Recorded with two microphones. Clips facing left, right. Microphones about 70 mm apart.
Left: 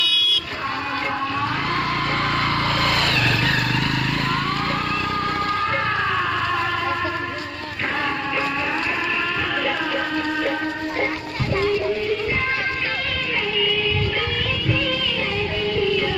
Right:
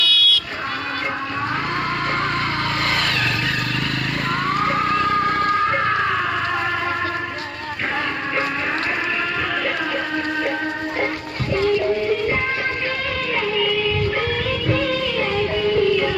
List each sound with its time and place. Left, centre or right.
0.0 s vehicle: centre
4.6 s vehicle: centre
4.8 s vehicle: right
5.7 s a sound: right